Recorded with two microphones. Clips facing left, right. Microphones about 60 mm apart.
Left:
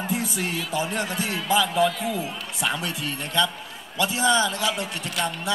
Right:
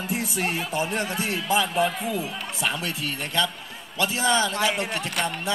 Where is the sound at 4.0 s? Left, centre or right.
Right.